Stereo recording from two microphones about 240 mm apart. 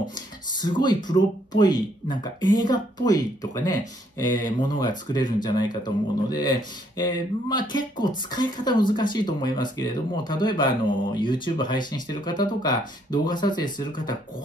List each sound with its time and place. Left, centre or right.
0.0 s speech: centre